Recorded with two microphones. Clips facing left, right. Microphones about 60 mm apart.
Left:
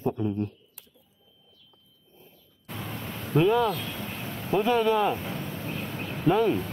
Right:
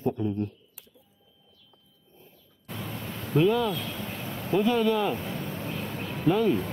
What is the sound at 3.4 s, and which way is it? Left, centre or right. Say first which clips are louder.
Speech: left 1 dB; centre.